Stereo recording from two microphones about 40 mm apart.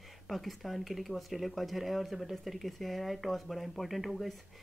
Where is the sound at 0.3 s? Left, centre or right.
Centre.